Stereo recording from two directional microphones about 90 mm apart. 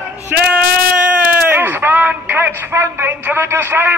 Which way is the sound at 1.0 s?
15° right (ahead or behind).